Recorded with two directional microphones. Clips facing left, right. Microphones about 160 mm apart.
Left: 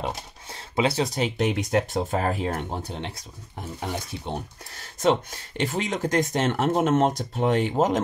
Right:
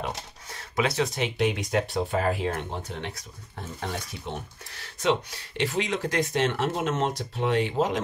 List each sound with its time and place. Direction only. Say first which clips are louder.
0.0 s speech: left 2 dB; 30° left (ahead or behind)
3.5 s speech: left 2 dB; 15° left (ahead or behind)
4.3 s speech: left 3 dB; 45° left (ahead or behind)